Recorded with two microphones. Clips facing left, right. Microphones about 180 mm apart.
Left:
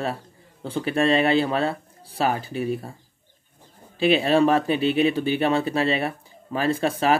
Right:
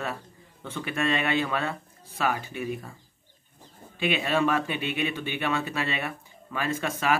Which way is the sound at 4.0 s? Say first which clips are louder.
Left 7 dB; 35° left (ahead or behind).